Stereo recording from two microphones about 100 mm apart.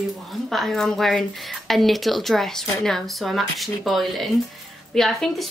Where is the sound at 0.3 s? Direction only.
Centre (ahead or behind).